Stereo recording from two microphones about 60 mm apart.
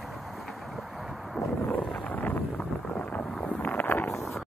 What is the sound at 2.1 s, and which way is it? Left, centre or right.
Wind noise, left.